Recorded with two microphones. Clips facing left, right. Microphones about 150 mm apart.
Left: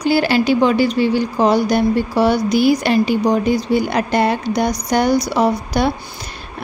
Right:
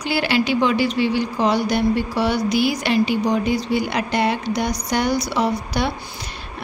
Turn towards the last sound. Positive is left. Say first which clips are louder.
# left 5 dB
turn(degrees=45)  # may be behind; listen again after turning